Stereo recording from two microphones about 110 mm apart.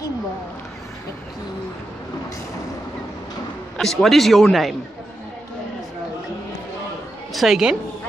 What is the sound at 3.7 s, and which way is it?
A man's voice, 5° left (ahead or behind).